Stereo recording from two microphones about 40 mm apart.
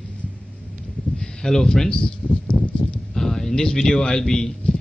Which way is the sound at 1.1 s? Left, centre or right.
Left.